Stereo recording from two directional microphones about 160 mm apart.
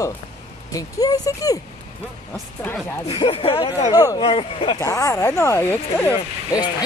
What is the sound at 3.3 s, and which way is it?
Speech, 35° left (ahead or behind).